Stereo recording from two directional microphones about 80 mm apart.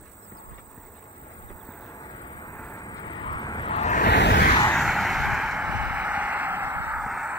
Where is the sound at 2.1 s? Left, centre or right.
Left.